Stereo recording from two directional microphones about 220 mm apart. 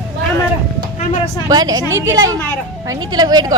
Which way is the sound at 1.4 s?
15° right (ahead or behind).